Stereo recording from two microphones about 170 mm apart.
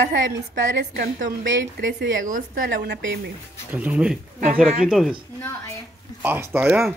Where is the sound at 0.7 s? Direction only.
70° right (ahead or behind).